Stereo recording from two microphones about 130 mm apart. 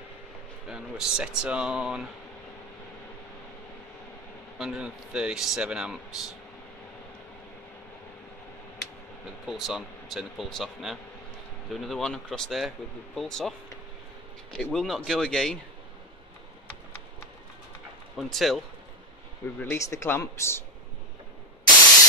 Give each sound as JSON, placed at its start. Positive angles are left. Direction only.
{"t": 0.7, "sound": "speech", "side_deg": -5}
{"t": 4.6, "sound": "speech", "side_deg": -5}
{"t": 9.5, "sound": "speech", "side_deg": -5}
{"t": 18.1, "sound": "speech", "side_deg": 0}
{"t": 19.6, "sound": "speech", "side_deg": 20}